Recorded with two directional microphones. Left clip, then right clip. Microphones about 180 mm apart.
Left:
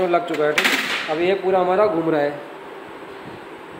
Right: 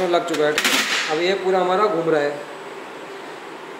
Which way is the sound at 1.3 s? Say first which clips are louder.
Left 2 dB; 40° left (ahead or behind).